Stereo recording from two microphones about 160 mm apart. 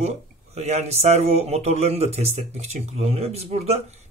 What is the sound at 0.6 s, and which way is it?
Speech, 45° right (ahead or behind).